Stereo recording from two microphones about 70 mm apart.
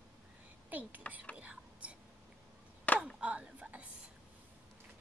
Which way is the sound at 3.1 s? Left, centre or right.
Centre.